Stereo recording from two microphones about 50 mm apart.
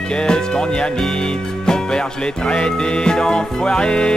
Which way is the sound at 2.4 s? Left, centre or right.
Centre.